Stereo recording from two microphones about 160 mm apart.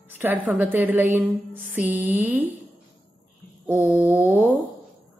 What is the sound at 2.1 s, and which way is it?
Speech, 10° right (ahead or behind).